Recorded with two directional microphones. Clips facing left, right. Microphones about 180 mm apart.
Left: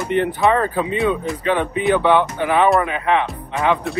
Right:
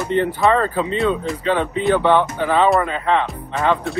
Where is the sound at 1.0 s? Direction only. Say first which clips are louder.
Even; centre (ahead or behind).